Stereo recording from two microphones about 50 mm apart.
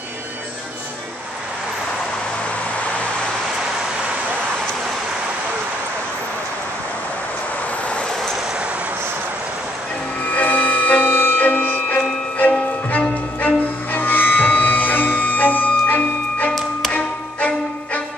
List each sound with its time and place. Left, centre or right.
10.2 s music: left
12.4 s music: left
13.9 s music: left